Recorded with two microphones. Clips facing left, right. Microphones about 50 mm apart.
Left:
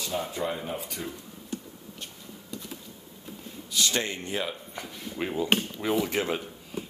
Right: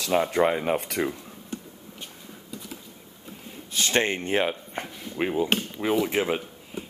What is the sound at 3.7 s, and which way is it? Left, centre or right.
Speech, right.